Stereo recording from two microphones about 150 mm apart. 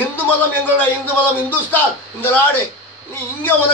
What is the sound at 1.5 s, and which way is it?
A man's voice, 15° left (ahead or behind).